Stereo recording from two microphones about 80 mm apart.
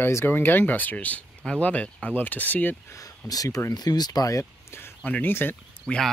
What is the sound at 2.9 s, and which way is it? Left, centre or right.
Speech, left.